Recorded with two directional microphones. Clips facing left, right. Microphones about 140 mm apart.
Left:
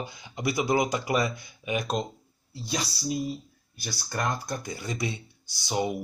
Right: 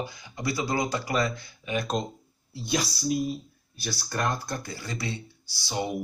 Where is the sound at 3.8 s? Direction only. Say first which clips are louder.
Right 1 dB; 15° left (ahead or behind).